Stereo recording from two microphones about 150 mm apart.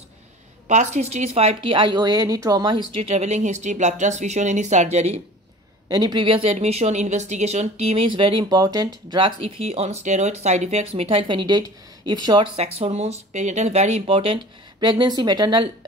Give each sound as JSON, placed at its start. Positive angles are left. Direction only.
{"t": 0.7, "sound": "speech", "side_deg": -50}
{"t": 5.9, "sound": "speech", "side_deg": -25}
{"t": 12.5, "sound": "speech", "side_deg": -45}